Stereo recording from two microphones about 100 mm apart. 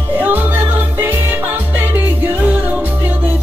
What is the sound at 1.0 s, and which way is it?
Music, 20° right (ahead or behind).